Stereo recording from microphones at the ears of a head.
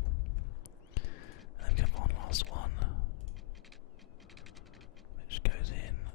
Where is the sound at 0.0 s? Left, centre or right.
Left.